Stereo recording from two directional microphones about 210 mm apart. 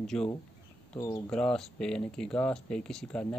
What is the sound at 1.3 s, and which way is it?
Speech, 5° left (ahead or behind).